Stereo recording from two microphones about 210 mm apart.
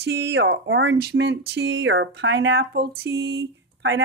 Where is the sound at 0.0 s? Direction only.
55° right (ahead or behind).